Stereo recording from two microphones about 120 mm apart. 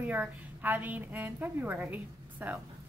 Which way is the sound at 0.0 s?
15° right (ahead or behind).